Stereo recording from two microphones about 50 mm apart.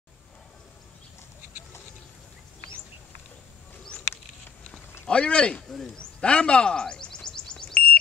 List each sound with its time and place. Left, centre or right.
5.0 s speech: left
5.7 s a man's voice: centre
6.2 s a sound: left